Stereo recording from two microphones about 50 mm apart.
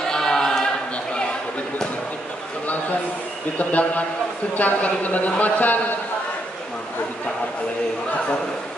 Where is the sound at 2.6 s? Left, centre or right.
Left.